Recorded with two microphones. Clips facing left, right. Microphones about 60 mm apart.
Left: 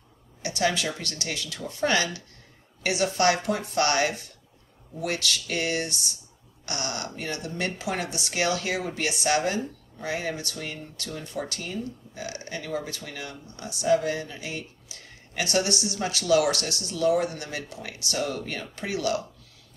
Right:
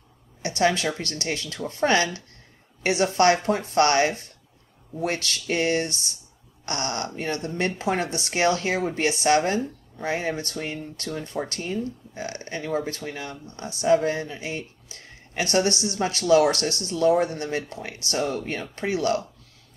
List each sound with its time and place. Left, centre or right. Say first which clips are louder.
0.4 s speech: right 4 dB; right